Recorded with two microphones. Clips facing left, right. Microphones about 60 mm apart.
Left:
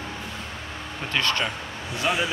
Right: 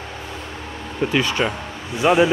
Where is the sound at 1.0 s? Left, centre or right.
Centre.